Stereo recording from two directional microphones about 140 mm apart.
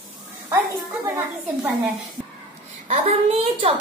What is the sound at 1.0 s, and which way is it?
Speech, 15° right (ahead or behind).